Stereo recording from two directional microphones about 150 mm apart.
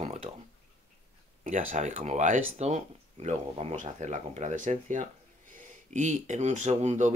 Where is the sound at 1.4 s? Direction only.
55° right (ahead or behind).